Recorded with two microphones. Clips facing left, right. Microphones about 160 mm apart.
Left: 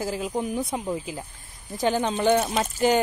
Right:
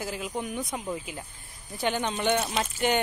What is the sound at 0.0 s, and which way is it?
Speech, 35° left (ahead or behind).